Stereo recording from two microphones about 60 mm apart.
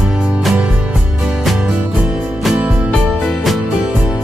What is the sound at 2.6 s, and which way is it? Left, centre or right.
Music, right.